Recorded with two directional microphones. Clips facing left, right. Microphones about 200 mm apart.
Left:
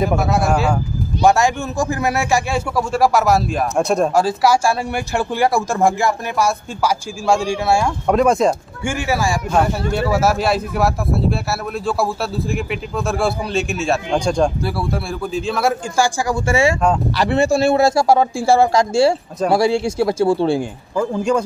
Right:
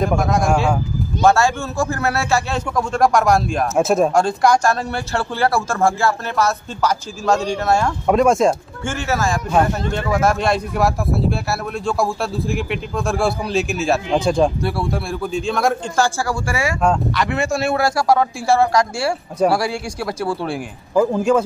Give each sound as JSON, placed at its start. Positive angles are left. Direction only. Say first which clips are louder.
{"t": 0.0, "sound": "a man's voice", "louder": "even", "side_deg": 5}
{"t": 1.2, "sound": "a man's voice", "louder": "left 1 dB", "side_deg": 15}
{"t": 8.8, "sound": "a man's voice", "louder": "left 1 dB", "side_deg": 10}
{"t": 16.3, "sound": "a man's voice", "louder": "left 5 dB", "side_deg": 25}
{"t": 21.0, "sound": "a man's voice", "louder": "right 2 dB", "side_deg": -5}